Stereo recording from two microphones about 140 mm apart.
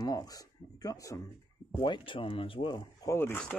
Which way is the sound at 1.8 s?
35° left (ahead or behind).